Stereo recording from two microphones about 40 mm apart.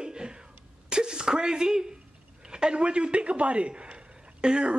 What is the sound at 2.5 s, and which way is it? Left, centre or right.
Speech, right.